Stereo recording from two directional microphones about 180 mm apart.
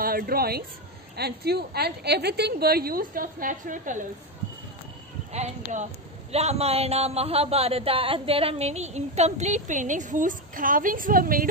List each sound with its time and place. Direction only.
0.0 s a woman's voice: 55° right (ahead or behind)
5.3 s speech: 40° right (ahead or behind)